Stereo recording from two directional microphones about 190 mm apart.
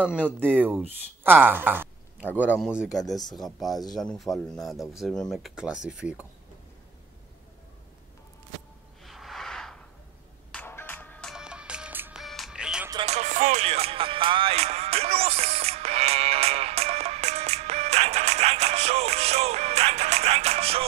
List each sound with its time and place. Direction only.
0.0 s speech: 5° right (ahead or behind)
9.0 s a sound: centre (ahead or behind)
10.5 s music: 10° left (ahead or behind); by 12.9 s 5° right (ahead or behind)
12.9 s music: 35° right (ahead or behind)